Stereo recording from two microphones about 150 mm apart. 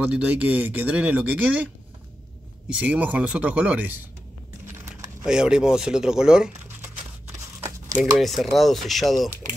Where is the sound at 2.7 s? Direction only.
10° right (ahead or behind).